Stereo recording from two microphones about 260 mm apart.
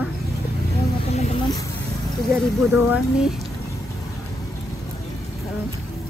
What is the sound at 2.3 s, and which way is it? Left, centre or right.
A woman's voice, centre.